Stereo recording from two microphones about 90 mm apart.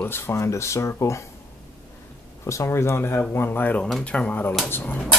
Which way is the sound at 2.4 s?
35° left (ahead or behind).